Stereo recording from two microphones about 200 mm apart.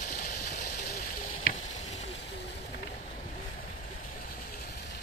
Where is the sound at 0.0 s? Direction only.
35° left (ahead or behind).